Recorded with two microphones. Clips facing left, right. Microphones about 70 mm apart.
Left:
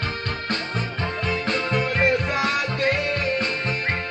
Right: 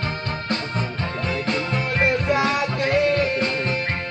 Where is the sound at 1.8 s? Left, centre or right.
Centre.